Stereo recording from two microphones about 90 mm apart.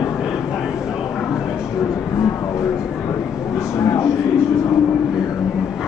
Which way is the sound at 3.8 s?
35° left (ahead or behind).